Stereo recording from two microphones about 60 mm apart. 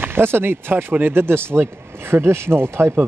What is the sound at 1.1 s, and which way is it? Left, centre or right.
Speech, right.